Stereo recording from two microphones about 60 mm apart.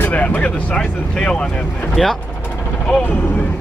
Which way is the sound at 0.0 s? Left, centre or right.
Left.